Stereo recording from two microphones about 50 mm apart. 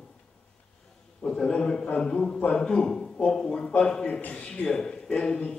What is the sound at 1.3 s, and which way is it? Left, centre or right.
A man's voice, centre.